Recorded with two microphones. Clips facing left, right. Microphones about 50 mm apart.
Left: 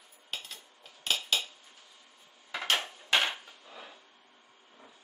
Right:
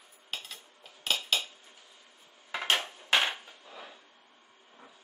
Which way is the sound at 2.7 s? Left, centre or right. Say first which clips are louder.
Even; centre.